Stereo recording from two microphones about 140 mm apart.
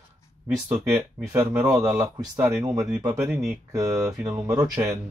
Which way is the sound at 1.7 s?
25° right (ahead or behind).